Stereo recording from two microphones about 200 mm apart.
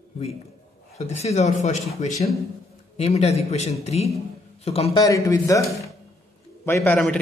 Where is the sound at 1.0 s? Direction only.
30° left (ahead or behind).